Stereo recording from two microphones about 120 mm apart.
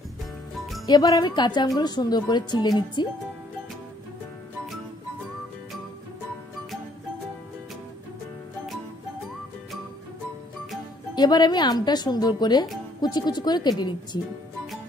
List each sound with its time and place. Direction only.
0.8 s a woman's voice: 30° left (ahead or behind)
11.1 s a woman's voice: 35° left (ahead or behind)